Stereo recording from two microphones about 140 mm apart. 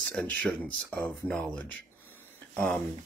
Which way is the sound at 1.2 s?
10° left (ahead or behind).